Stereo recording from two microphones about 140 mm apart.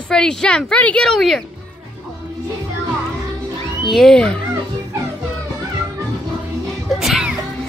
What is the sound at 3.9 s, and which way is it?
Speech, centre (ahead or behind).